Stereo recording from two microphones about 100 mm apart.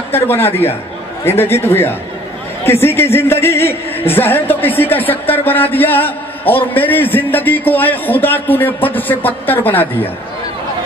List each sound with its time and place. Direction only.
0.1 s a man's voice: 20° left (ahead or behind)